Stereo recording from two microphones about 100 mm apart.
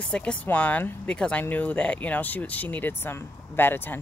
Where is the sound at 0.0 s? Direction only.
10° left (ahead or behind).